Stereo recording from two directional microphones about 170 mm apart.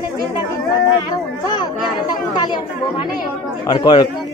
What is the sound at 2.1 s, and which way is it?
A man's voice, 25° left (ahead or behind).